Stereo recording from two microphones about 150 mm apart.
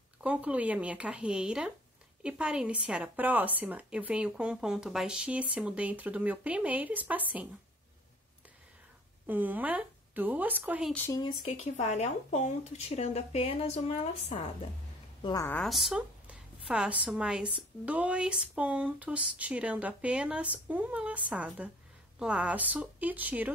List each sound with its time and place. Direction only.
0.2 s speech: 10° right (ahead or behind)
9.2 s a woman's voice: 10° right (ahead or behind)
11.1 s speech: 30° left (ahead or behind)
11.6 s speech: 50° left (ahead or behind)
15.6 s a woman's voice: centre (ahead or behind)